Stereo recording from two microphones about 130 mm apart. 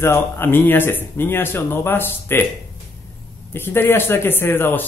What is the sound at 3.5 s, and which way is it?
Speech, 15° left (ahead or behind).